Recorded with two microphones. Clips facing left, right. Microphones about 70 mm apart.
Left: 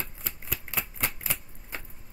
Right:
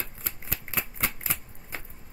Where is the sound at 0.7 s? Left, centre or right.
Centre.